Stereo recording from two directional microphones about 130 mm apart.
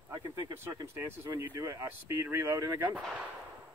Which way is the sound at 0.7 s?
20° right (ahead or behind).